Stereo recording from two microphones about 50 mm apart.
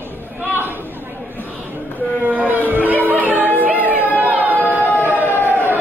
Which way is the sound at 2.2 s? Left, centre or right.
Right.